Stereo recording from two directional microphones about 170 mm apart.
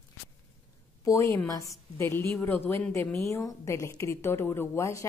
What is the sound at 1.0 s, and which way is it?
A woman's voice, 20° left (ahead or behind).